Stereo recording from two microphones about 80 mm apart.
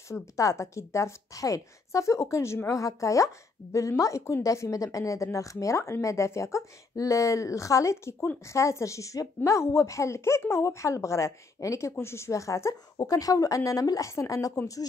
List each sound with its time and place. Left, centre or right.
0.1 s a woman's voice: left